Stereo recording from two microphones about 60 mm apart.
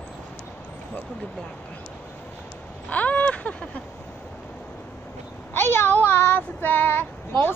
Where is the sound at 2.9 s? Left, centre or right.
Left.